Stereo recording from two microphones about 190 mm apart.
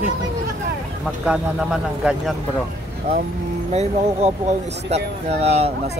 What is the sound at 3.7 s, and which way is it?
Speech, 35° right (ahead or behind).